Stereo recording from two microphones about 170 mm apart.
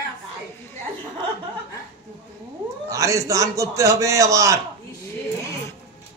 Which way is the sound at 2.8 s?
20° right (ahead or behind).